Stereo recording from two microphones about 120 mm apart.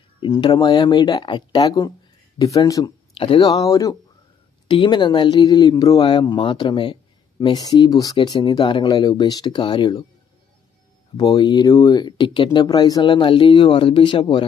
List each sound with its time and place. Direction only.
0.4 s speech: 40° left (ahead or behind)
4.6 s speech: 45° left (ahead or behind)
7.5 s speech: 35° left (ahead or behind)
11.1 s speech: 30° left (ahead or behind)